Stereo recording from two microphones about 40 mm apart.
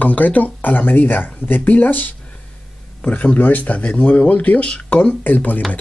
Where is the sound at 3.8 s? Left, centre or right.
Left.